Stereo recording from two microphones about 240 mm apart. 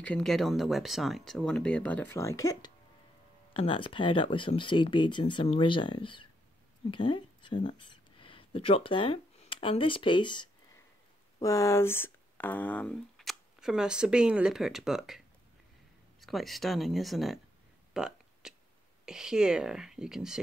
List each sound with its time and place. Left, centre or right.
0.0 s speech: centre
17.9 s a sound: centre
19.0 s speech: centre